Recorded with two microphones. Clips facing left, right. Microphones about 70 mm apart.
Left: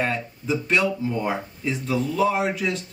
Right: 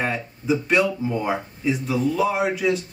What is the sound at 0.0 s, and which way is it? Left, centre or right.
Speech, centre.